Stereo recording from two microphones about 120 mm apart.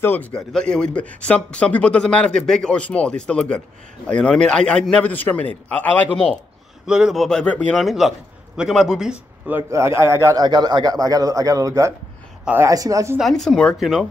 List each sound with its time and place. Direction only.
0.0 s a man's voice: 15° left (ahead or behind)
6.9 s a man's voice: 5° right (ahead or behind)
7.2 s a man's voice: 10° left (ahead or behind)
7.7 s a man's voice: centre (ahead or behind)
9.7 s a man's voice: 25° right (ahead or behind)
13.2 s a man's voice: centre (ahead or behind)